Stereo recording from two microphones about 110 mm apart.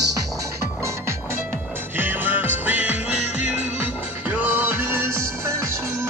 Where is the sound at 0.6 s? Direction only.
25° right (ahead or behind).